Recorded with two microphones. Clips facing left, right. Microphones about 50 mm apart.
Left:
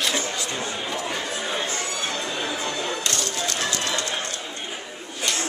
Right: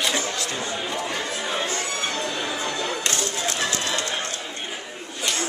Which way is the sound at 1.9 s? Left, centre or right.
Right.